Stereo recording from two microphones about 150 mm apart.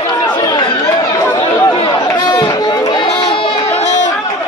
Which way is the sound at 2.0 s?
25° left (ahead or behind).